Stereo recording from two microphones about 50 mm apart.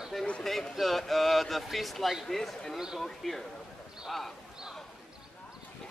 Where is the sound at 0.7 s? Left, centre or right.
Centre.